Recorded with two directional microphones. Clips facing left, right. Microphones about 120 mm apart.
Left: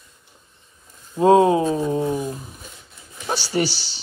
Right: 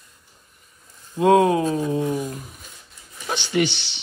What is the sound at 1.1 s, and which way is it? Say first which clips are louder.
Speech: left 2 dB; 30° left (ahead or behind).